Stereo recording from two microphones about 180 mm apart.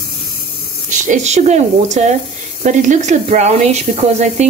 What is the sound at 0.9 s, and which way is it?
Speech, 45° right (ahead or behind).